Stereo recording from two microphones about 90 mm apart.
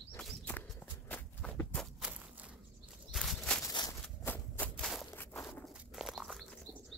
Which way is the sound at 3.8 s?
55° left (ahead or behind).